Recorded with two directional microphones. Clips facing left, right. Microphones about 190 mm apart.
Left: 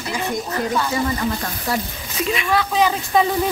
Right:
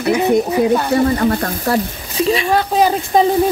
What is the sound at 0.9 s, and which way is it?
Speech, 60° right (ahead or behind).